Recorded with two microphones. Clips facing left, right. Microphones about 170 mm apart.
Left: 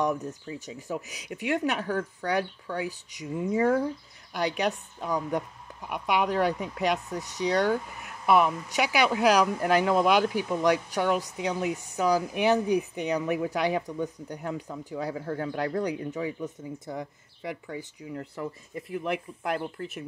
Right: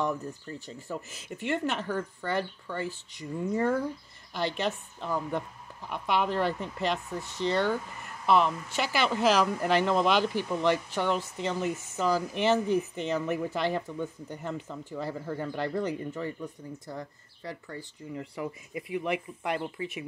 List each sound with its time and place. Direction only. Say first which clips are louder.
0.7 s speech: left 3 dB; 15° left (ahead or behind)
1.3 s speech: left 2 dB; centre (ahead or behind)
13.2 s speech: left 2 dB; centre (ahead or behind)
13.5 s speech: left 2 dB; 10° left (ahead or behind)
16.3 s speech: left 4 dB; 20° left (ahead or behind)
18.0 s speech: right 1 dB; 5° right (ahead or behind)